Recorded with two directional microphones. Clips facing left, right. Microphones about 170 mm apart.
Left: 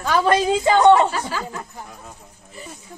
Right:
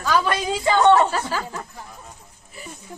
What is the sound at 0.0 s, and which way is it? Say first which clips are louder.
A woman's voice: left 4 dB; 25° left (ahead or behind).